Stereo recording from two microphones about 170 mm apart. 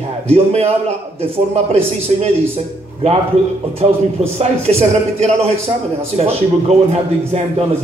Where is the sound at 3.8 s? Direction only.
40° right (ahead or behind).